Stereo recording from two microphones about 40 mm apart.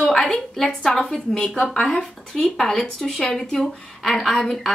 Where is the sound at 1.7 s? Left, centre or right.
Centre.